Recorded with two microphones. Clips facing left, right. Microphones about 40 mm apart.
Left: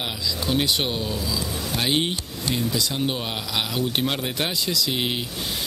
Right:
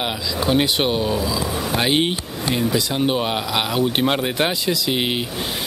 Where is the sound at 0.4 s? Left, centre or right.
Right.